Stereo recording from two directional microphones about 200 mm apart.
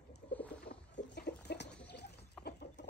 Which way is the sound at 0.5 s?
55° left (ahead or behind).